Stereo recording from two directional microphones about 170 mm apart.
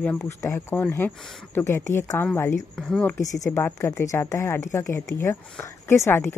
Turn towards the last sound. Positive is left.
turn(degrees=15)  # may be behind; listen again after turning